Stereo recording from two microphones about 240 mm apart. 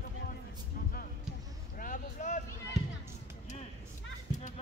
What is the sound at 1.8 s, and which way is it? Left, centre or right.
Vehicle, left.